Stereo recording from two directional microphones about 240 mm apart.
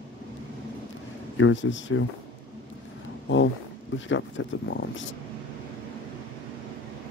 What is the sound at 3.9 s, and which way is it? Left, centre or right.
Speech, left.